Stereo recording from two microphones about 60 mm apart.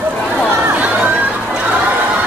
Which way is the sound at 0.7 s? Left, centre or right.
Right.